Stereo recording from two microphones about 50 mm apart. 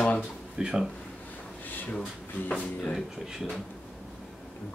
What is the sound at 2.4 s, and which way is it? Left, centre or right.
Speech, left.